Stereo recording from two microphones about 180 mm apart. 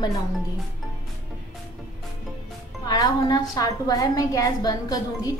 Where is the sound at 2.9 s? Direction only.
20° left (ahead or behind).